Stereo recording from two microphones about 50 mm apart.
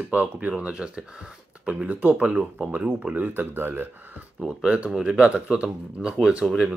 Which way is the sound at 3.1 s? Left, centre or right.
Right.